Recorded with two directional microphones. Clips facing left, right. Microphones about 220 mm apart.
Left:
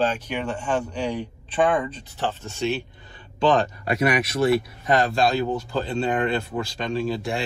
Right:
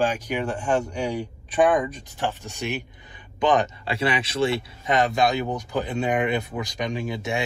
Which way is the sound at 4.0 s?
25° right (ahead or behind).